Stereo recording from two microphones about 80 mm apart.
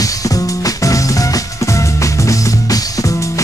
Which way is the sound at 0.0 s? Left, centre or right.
Left.